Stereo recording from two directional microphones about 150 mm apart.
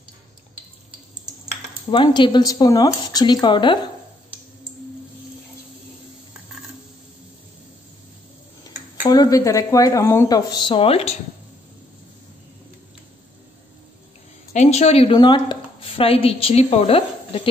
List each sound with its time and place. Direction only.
1.9 s speech: 35° left (ahead or behind)
9.1 s speech: 25° left (ahead or behind); by 11.1 s 40° left (ahead or behind)
14.5 s a woman's voice: 50° left (ahead or behind)
15.1 s a woman's voice: 30° left (ahead or behind)